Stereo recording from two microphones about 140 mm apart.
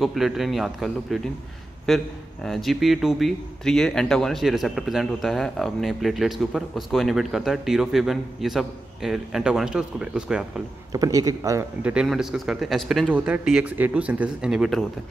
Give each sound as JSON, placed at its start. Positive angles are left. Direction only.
{"t": 0.0, "sound": "speech", "side_deg": 0}
{"t": 10.9, "sound": "a man's voice", "side_deg": -25}
{"t": 11.8, "sound": "speech", "side_deg": -5}
{"t": 13.1, "sound": "speech", "side_deg": -10}